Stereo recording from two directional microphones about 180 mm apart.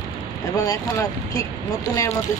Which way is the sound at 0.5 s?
20° left (ahead or behind).